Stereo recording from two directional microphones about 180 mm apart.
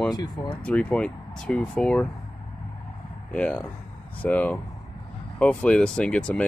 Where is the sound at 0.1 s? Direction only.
20° left (ahead or behind).